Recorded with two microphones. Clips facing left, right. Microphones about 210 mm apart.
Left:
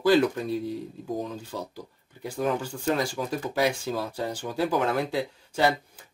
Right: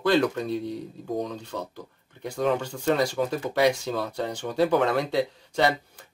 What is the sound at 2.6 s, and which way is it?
Speech, 75° right (ahead or behind).